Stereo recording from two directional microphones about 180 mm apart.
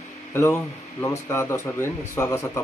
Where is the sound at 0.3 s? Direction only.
15° left (ahead or behind).